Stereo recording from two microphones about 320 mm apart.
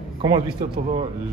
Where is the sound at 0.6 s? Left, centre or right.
Centre.